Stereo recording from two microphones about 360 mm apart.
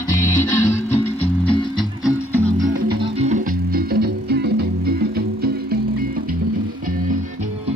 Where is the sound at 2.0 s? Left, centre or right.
Centre.